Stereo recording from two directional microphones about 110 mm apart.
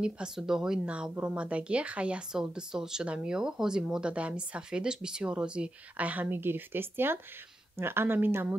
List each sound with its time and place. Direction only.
0.0 s a woman's voice: 5° right (ahead or behind)